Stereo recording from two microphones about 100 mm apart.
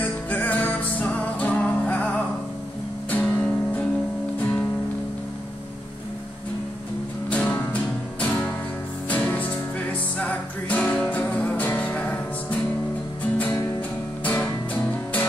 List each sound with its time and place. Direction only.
0.0 s music: 15° left (ahead or behind)
7.2 s music: 15° left (ahead or behind)
13.7 s music: 20° left (ahead or behind)